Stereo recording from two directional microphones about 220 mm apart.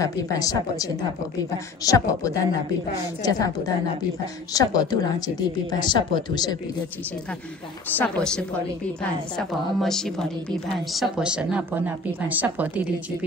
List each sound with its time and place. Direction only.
0.0 s speech: 15° left (ahead or behind)
1.9 s speech: 15° left (ahead or behind)
4.6 s speech: 15° left (ahead or behind)
7.9 s a woman's voice: 5° left (ahead or behind)
9.4 s a woman's voice: centre (ahead or behind)